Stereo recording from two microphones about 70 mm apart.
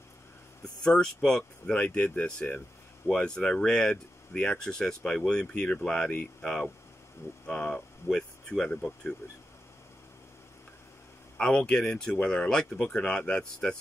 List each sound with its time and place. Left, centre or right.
0.8 s speech: centre
11.3 s speech: centre